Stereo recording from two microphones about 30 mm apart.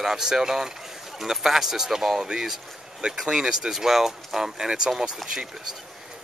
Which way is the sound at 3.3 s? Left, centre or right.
Right.